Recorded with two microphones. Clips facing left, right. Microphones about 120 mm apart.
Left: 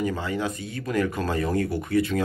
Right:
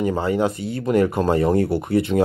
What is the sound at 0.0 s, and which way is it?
Speech, 30° right (ahead or behind).